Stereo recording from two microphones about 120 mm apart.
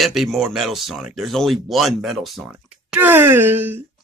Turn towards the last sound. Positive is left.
turn(degrees=-15)  # may be behind; listen again after turning